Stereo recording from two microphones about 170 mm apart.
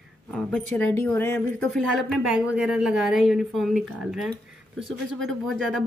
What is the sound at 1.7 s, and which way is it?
A woman's voice, centre (ahead or behind).